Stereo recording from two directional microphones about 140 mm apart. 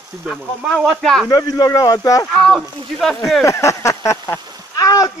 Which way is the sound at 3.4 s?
20° left (ahead or behind).